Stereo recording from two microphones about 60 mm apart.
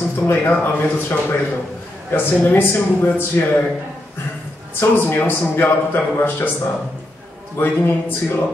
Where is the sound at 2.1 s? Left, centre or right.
Left.